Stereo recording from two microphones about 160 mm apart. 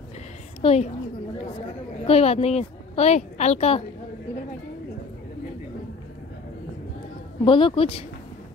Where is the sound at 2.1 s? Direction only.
40° left (ahead or behind).